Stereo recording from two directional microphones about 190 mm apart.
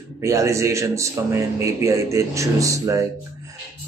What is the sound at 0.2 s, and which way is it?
Speech, 15° right (ahead or behind).